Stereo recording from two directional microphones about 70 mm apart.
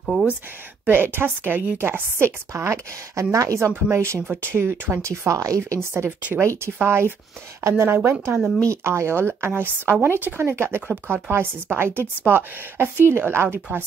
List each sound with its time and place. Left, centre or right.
0.8 s a woman's voice: right
5.0 s speech: right
5.6 s a woman's voice: right
6.0 s speech: right
6.4 s a woman's voice: right